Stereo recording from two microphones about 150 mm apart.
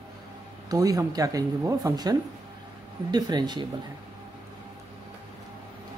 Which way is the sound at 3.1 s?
30° right (ahead or behind).